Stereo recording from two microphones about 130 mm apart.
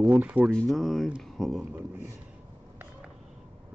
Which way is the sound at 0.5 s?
5° left (ahead or behind).